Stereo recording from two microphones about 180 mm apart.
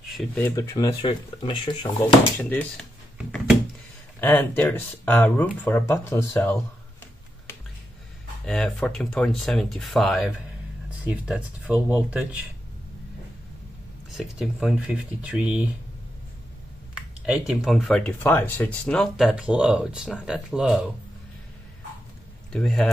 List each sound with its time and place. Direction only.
0.2 s speech: 5° left (ahead or behind); by 1.9 s 25° left (ahead or behind)
4.2 s speech: 10° left (ahead or behind)
8.5 s speech: 5° left (ahead or behind)
14.1 s speech: centre (ahead or behind)
16.9 s speech: 5° right (ahead or behind)
22.5 s speech: 5° left (ahead or behind)